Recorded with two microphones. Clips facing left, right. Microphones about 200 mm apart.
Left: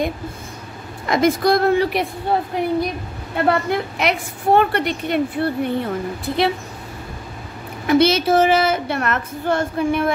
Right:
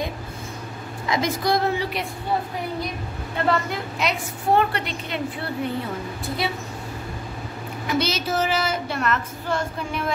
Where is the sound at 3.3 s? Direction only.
60° left (ahead or behind).